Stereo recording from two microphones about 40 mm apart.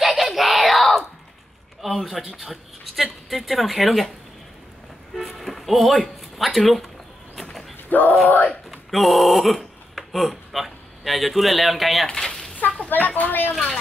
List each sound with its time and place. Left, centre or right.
0.0 s a sound: centre
1.8 s speech: centre
5.1 s music: centre
7.9 s speech: left
8.6 s speech: centre
12.1 s a sound: centre
12.9 s speech: left